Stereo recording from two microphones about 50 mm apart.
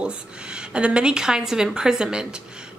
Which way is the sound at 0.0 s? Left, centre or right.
Centre.